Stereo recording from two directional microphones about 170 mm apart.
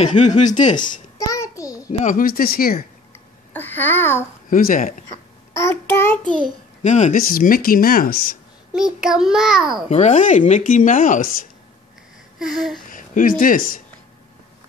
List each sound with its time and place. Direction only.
0.0 s speech: 45° left (ahead or behind)
1.2 s child singing: 20° left (ahead or behind)
1.9 s speech: 50° left (ahead or behind)
3.5 s a child's voice: 10° left (ahead or behind)
4.5 s speech: 55° left (ahead or behind)
5.5 s child singing: 15° left (ahead or behind)
6.8 s speech: 45° left (ahead or behind)
8.7 s a child's voice: 5° right (ahead or behind)
9.8 s speech: 40° left (ahead or behind)
12.4 s a child's voice: centre (ahead or behind)
12.9 s speech: 55° left (ahead or behind)